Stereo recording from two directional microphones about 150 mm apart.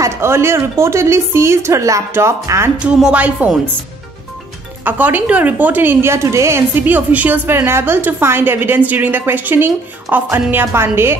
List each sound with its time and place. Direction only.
0.0 s a woman's voice: 15° right (ahead or behind)
2.8 s a woman's voice: 5° right (ahead or behind)
4.8 s a woman's voice: 10° right (ahead or behind)